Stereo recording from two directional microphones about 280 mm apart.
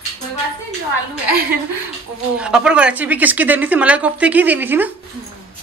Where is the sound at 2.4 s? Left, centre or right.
Centre.